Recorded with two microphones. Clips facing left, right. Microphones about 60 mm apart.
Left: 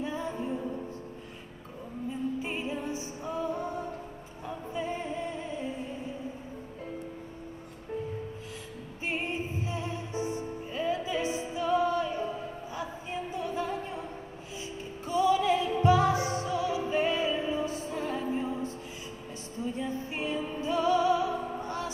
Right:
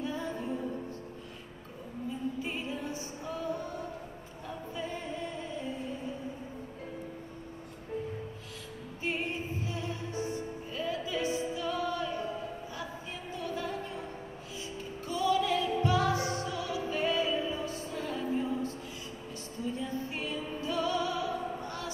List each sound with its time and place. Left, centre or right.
0.0 s music: left
2.4 s music: left
9.0 s music: left
12.7 s a sound: left
15.0 s music: left
19.7 s music: left